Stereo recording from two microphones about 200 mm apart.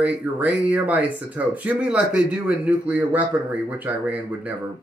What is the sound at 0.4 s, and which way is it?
Speech, 5° right (ahead or behind).